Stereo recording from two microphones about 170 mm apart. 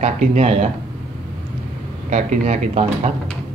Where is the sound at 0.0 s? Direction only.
40° right (ahead or behind).